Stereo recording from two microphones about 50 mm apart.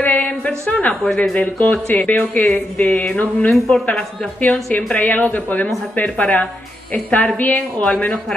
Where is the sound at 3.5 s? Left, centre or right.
Centre.